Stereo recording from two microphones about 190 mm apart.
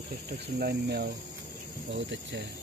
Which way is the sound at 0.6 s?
55° right (ahead or behind).